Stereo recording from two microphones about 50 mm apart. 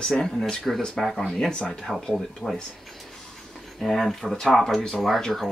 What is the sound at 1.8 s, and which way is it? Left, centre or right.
Speech, centre.